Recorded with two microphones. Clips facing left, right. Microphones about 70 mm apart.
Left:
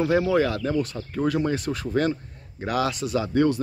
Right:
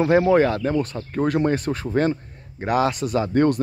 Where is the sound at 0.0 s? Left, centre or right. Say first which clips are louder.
Right 4 dB; right.